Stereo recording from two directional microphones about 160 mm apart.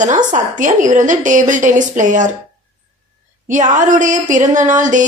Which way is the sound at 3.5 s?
50° right (ahead or behind).